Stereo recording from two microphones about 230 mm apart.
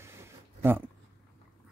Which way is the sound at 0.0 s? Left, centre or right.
Centre.